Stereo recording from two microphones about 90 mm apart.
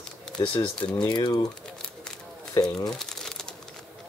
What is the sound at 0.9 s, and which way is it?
Speech, 55° left (ahead or behind).